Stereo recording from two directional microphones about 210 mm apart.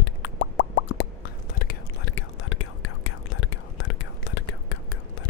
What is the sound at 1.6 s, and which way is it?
Whispering, 45° left (ahead or behind).